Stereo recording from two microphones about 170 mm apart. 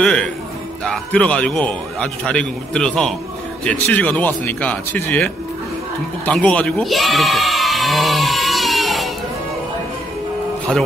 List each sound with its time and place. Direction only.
0.0 s a man's voice: 5° left (ahead or behind)
6.2 s bleat: 10° left (ahead or behind)
10.7 s a man's voice: 5° left (ahead or behind)